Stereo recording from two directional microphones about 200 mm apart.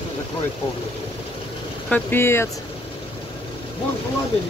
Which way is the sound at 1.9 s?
10° left (ahead or behind).